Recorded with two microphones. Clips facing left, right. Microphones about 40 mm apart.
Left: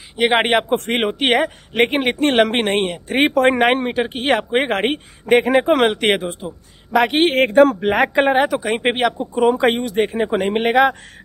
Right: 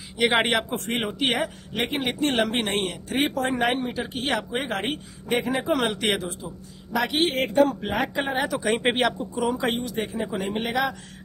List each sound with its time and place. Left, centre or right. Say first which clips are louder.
0.2 s speech: left 6 dB; left
0.7 s a man's voice: left 9 dB; left
3.1 s a man's voice: left 10 dB; left
7.6 s speech: left 9 dB; left
8.5 s speech: left 4 dB; centre
9.3 s a man's voice: left 9 dB; left